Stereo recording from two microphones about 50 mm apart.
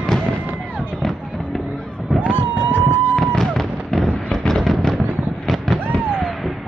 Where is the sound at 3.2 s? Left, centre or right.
Centre.